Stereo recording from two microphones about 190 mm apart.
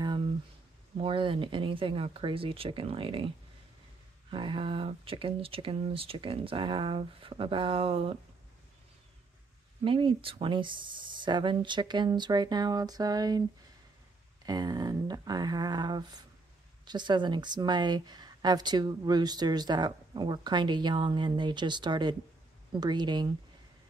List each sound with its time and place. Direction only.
0.0 s a sound: 25° right (ahead or behind)
0.9 s speech: 25° right (ahead or behind)
4.3 s speech: 25° right (ahead or behind)
9.8 s speech: 25° right (ahead or behind)
14.4 s speech: 20° right (ahead or behind)